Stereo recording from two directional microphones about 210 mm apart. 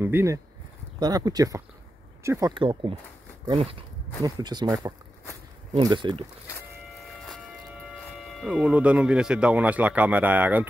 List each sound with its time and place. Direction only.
0.0 s speech: 10° right (ahead or behind)
7.0 s a sound: centre (ahead or behind)
8.3 s speech: centre (ahead or behind)